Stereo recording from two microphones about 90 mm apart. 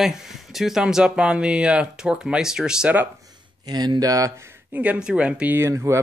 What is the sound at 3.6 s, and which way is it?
Speech, 50° right (ahead or behind).